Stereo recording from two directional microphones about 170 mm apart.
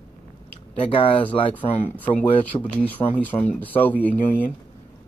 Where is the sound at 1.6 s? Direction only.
35° left (ahead or behind).